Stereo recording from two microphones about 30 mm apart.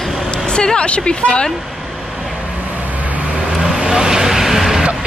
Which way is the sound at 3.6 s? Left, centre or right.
Right.